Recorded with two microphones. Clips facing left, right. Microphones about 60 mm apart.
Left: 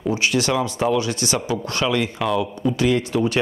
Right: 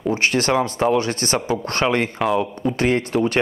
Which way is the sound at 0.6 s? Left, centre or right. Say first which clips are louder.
Right 2 dB; right.